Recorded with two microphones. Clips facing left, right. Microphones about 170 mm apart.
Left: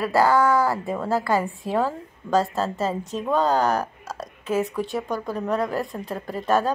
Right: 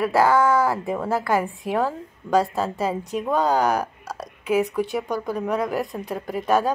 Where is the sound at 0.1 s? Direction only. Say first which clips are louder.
Left 1 dB; centre (ahead or behind).